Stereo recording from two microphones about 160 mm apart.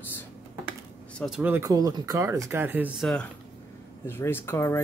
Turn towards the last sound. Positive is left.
turn(degrees=15)  # may be behind; listen again after turning